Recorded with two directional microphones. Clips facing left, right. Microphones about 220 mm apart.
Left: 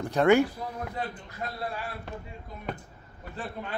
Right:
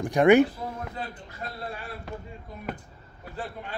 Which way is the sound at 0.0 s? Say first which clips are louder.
Right 3 dB; 15° right (ahead or behind).